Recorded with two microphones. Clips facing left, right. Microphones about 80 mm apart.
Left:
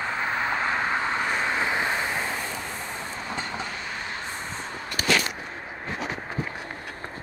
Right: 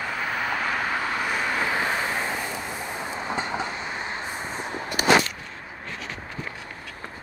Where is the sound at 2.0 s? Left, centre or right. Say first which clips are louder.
Right 1 dB; centre.